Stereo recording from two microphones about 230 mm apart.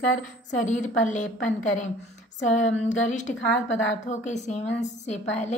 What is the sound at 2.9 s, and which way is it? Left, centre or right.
A woman's voice, left.